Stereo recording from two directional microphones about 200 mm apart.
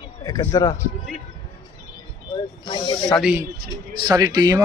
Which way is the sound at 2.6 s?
20° left (ahead or behind).